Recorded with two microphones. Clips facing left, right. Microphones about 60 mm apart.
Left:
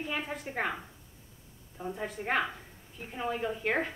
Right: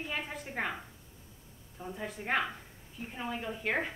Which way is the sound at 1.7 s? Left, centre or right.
Centre.